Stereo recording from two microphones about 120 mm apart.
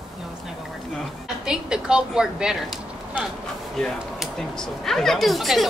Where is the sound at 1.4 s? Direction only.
5° right (ahead or behind).